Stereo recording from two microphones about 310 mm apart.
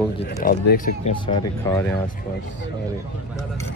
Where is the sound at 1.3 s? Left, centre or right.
Centre.